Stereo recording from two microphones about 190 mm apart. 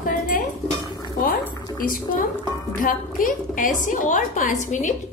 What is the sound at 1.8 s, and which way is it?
A woman's voice, 45° left (ahead or behind).